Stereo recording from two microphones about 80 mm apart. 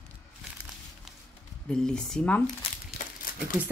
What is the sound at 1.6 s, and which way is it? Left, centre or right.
Speech, centre.